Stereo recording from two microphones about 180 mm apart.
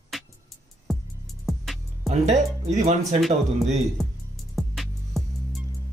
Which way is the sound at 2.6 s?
40° right (ahead or behind).